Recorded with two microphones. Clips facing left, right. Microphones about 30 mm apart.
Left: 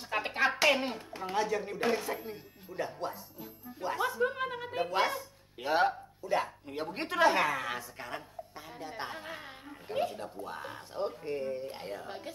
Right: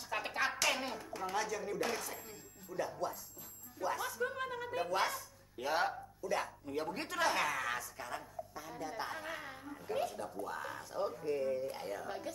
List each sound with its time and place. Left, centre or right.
0.1 s speech: left